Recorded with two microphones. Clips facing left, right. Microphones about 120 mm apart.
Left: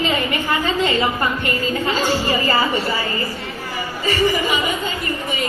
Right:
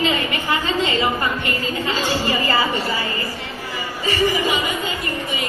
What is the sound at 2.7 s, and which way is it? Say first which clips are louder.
Speech: left 2 dB; 15° left (ahead or behind).